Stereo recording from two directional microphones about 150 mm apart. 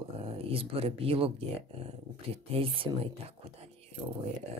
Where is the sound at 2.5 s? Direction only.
40° right (ahead or behind).